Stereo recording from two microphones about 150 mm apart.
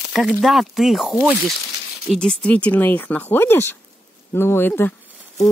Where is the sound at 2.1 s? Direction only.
5° left (ahead or behind).